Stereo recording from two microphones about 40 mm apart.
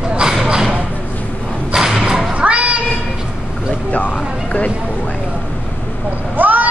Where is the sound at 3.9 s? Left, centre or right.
Left.